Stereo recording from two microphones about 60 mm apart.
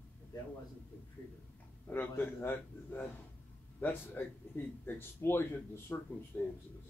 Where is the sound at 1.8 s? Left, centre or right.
Left.